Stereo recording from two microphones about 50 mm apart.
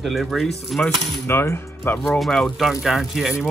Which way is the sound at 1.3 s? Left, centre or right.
Left.